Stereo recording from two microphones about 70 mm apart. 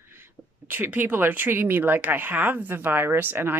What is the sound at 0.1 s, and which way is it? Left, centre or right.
Speech, right.